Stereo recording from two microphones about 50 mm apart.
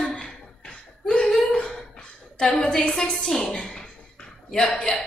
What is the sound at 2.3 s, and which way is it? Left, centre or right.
A woman's voice, centre.